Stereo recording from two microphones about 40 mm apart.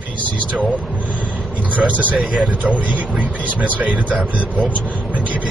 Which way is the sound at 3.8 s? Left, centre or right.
Right.